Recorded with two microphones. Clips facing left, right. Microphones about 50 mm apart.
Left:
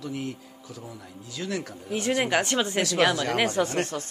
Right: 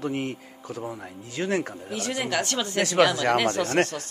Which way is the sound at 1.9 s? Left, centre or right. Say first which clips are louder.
Left 4 dB; left.